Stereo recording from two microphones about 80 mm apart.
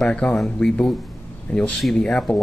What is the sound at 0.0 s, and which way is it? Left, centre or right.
A man's voice, centre.